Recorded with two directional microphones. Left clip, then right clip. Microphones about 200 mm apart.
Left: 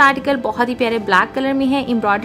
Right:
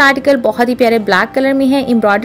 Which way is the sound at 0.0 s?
15° right (ahead or behind).